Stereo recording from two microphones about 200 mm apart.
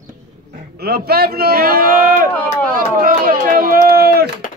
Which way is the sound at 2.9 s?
45° right (ahead or behind).